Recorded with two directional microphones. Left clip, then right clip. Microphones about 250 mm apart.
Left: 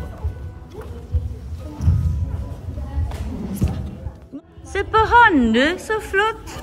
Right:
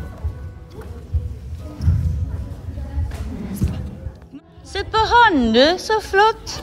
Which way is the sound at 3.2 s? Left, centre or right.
Centre.